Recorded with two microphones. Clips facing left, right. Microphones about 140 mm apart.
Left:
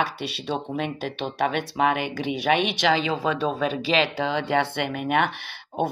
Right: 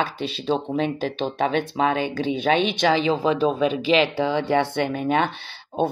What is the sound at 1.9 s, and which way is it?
Speech, 30° right (ahead or behind).